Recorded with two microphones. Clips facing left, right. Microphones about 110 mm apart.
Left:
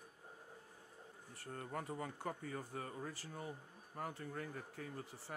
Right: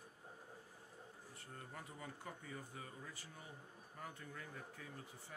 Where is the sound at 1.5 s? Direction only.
55° left (ahead or behind).